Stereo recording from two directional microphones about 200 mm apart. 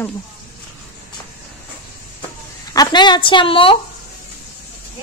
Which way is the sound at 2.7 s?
20° left (ahead or behind).